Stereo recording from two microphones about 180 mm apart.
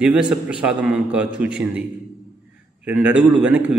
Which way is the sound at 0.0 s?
5° right (ahead or behind).